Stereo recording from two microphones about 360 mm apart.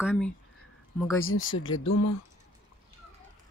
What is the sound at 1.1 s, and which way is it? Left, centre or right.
Speech, left.